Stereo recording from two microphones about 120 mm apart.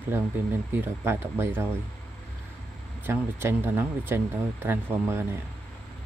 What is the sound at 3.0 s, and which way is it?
Speech, 20° right (ahead or behind).